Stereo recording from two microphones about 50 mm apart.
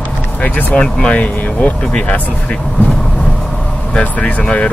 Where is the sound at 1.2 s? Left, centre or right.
Left.